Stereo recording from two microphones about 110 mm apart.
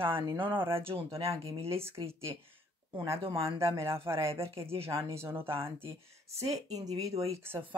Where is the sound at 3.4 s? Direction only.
25° right (ahead or behind).